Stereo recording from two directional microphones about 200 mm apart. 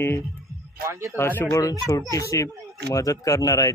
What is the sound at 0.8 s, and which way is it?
Speech, 15° right (ahead or behind).